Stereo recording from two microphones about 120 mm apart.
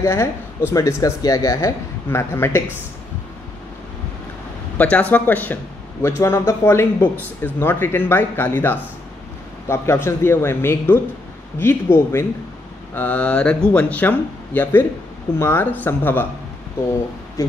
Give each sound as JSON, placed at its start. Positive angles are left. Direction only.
{"t": 0.0, "sound": "speech", "side_deg": 20}
{"t": 4.7, "sound": "speech", "side_deg": 10}